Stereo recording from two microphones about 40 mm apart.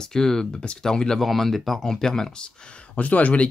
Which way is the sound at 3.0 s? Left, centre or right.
Left.